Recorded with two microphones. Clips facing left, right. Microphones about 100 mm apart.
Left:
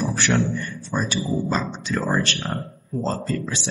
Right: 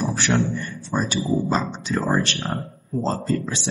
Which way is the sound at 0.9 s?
25° right (ahead or behind).